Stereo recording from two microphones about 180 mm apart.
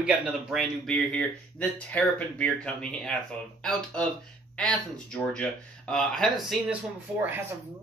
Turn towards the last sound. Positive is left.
turn(degrees=-10)  # may be behind; listen again after turning